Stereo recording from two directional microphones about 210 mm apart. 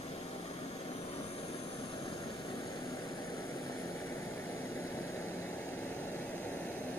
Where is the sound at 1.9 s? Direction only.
20° left (ahead or behind).